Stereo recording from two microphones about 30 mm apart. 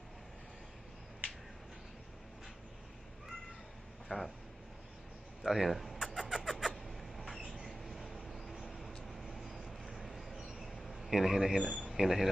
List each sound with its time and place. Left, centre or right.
4.1 s speech: left
5.4 s speech: centre
6.1 s vehicle: centre
6.9 s a sound: centre
7.9 s vehicle: centre
10.0 s mouse: centre
11.8 s speech: centre